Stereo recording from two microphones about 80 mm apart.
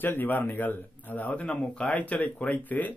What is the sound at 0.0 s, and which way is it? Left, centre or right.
Speech, left.